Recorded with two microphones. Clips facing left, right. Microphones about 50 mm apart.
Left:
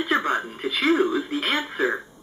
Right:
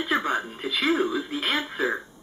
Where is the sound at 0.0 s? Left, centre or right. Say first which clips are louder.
Left 2 dB; centre.